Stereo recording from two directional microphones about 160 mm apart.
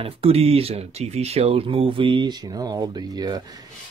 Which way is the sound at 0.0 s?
35° right (ahead or behind).